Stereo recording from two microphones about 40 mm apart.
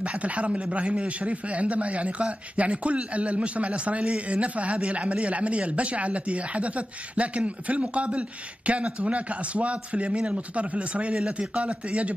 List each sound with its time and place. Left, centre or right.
0.0 s a man's voice: right
11.1 s a man's voice: right